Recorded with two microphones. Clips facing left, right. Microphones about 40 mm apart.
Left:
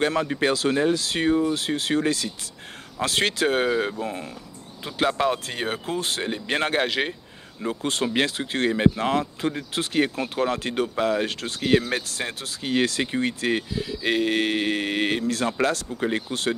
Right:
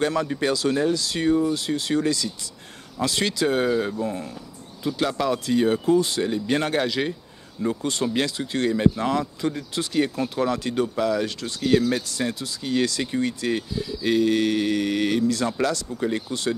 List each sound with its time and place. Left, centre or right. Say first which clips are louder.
0.0 s speech: left 1 dB; left
3.6 s speech: right 1 dB; left